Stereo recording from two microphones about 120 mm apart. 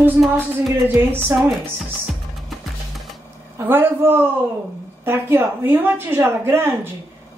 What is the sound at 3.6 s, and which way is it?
A woman's voice, 20° right (ahead or behind).